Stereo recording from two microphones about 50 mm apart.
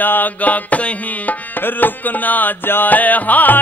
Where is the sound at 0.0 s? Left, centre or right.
Left.